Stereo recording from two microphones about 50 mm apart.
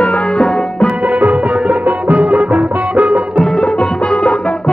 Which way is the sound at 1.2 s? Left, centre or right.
Right.